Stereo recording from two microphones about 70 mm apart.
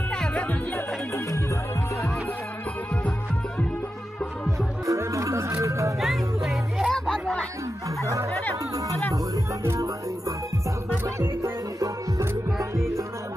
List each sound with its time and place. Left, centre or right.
0.1 s music: centre
0.7 s music: left
4.5 s music: right
5.9 s music: centre
6.9 s music: centre
8.7 s music: right